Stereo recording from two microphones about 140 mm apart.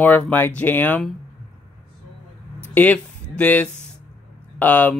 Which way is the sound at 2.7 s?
10° left (ahead or behind).